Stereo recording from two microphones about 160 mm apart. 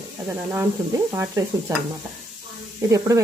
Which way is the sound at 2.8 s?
20° right (ahead or behind).